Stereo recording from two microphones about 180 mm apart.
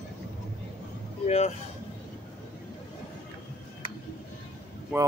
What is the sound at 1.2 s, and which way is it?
Music, 35° left (ahead or behind).